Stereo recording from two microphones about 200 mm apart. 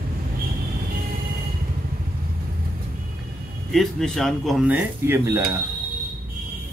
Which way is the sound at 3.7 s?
Centre (ahead or behind).